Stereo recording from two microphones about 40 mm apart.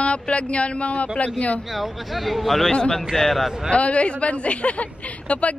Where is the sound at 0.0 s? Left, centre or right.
Left.